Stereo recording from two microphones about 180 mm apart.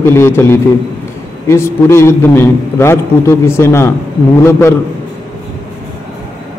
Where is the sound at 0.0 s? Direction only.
15° left (ahead or behind).